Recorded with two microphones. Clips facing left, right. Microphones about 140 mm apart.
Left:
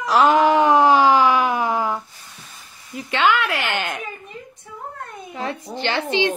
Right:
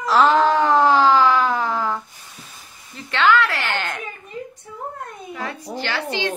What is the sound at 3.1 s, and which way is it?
Speech, 15° left (ahead or behind).